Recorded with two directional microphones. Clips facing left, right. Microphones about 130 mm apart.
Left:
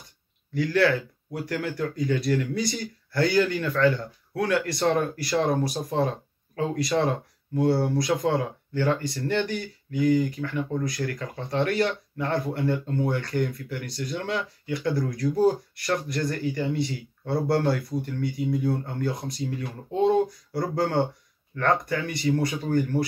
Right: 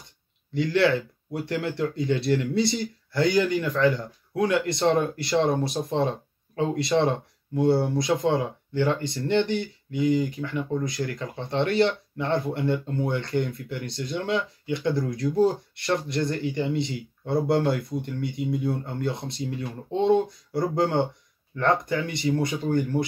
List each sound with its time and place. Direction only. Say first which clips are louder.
0.6 s speech: right 1 dB; 25° right (ahead or behind)